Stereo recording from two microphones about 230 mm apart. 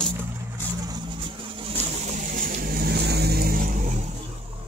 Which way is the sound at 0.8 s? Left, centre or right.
Centre.